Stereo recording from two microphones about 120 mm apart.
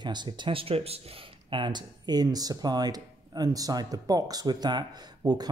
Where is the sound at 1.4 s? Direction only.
40° right (ahead or behind).